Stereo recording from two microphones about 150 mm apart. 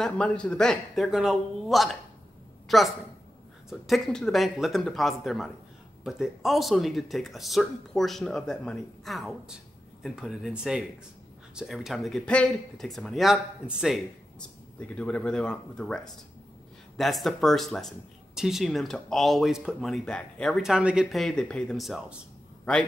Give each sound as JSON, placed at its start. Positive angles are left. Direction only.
{"t": 0.0, "sound": "a woman's voice", "side_deg": 5}
{"t": 14.8, "sound": "speech", "side_deg": 10}